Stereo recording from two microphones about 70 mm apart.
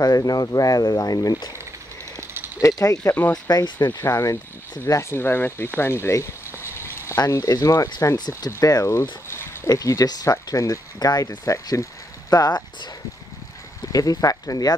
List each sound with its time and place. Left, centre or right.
0.0 s speech: left
2.1 s a sound: right
3.0 s speech: left
3.4 s speech: left
4.1 s speech: left
5.1 s speech: left
5.8 s a sound: left
7.2 s speech: left
9.7 s speech: left
12.3 s speech: left
13.9 s speech: left